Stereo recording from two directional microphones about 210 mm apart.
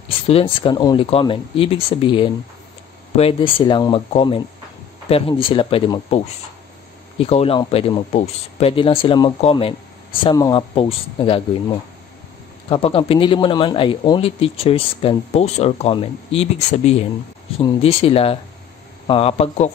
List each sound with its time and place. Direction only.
0.3 s a man's voice: 25° left (ahead or behind)
12.6 s a man's voice: 25° left (ahead or behind)